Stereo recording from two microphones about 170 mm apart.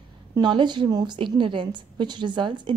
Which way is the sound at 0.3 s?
25° right (ahead or behind).